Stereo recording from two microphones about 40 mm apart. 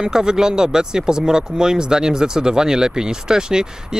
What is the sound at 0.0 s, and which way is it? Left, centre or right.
Speech, centre.